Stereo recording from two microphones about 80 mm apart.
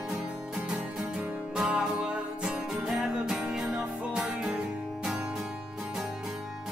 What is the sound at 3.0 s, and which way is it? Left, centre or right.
Music, centre.